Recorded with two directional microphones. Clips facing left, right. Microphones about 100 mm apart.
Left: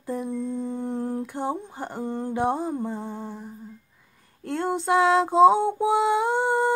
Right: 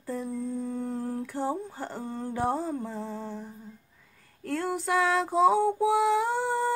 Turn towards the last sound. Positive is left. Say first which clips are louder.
# left 5 dB
turn(degrees=20)  # may be behind; listen again after turning